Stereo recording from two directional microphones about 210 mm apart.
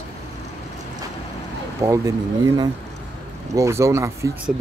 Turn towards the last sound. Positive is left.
turn(degrees=-15)  # may be behind; listen again after turning